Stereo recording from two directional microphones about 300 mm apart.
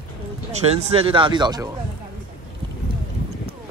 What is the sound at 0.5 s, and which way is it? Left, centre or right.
Speech, right.